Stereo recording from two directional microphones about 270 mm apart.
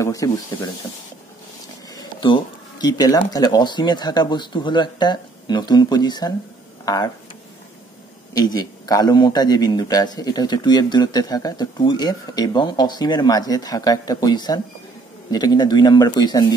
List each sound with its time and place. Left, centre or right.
0.0 s a man's voice: centre
2.0 s a man's voice: centre
8.4 s a man's voice: centre